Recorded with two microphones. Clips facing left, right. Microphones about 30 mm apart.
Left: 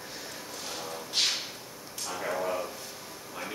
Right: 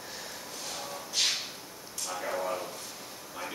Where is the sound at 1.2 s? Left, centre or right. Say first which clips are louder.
Left 1 dB; left.